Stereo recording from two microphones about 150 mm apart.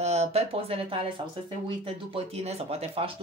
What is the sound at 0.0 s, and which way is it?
Speech, 45° right (ahead or behind).